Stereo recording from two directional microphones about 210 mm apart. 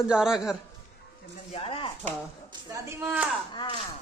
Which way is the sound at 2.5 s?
15° right (ahead or behind).